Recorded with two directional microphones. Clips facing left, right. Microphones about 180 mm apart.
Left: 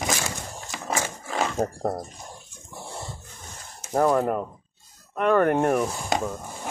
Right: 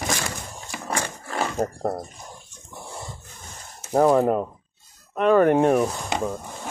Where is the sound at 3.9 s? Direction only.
15° right (ahead or behind).